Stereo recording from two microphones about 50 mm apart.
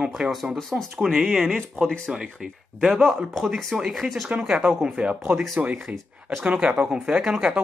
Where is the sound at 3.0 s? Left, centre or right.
Centre.